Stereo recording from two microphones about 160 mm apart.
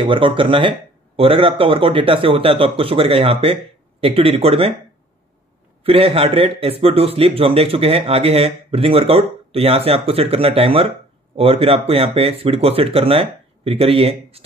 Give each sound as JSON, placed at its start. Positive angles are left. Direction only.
{"t": 0.0, "sound": "a man's voice", "side_deg": -35}
{"t": 5.9, "sound": "a man's voice", "side_deg": -35}